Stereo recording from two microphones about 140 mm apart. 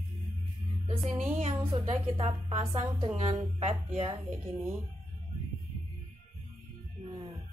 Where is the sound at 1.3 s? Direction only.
45° right (ahead or behind).